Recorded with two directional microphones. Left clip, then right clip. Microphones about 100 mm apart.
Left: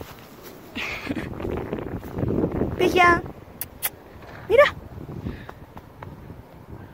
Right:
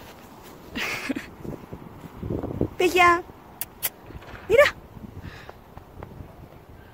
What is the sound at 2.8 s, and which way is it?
Vehicle, 25° right (ahead or behind).